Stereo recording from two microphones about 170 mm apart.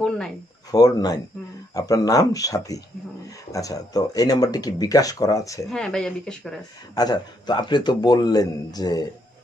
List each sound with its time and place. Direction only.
0.7 s speech: 20° left (ahead or behind)
5.7 s speech: 5° left (ahead or behind)
7.0 s speech: 25° left (ahead or behind)